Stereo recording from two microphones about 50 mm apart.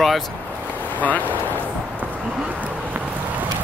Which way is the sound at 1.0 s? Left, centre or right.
Left.